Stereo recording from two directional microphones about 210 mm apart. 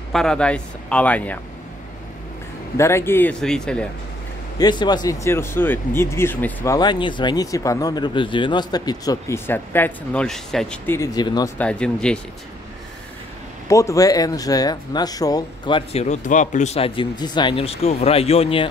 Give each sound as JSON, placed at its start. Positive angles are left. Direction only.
{"t": 0.1, "sound": "a man's voice", "side_deg": 5}
{"t": 2.8, "sound": "speech", "side_deg": 10}
{"t": 4.6, "sound": "speech", "side_deg": 20}
{"t": 11.1, "sound": "speech", "side_deg": 20}
{"t": 11.5, "sound": "a man's voice", "side_deg": 5}
{"t": 13.7, "sound": "speech", "side_deg": 15}